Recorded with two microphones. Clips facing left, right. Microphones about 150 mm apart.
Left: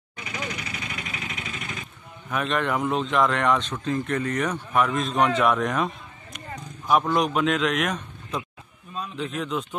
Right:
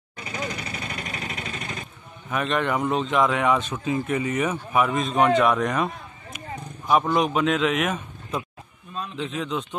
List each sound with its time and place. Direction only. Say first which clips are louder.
0.2 s vehicle: right 2 dB; 30° right (ahead or behind)
2.2 s a man's voice: right 1 dB; centre (ahead or behind)